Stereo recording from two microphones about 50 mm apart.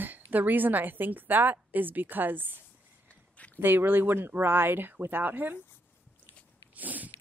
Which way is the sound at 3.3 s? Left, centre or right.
Left.